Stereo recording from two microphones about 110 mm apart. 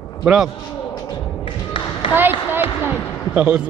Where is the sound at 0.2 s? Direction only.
5° right (ahead or behind).